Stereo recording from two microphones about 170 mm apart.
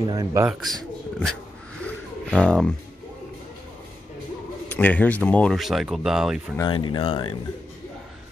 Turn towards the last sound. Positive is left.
turn(degrees=30)  # may be behind; listen again after turning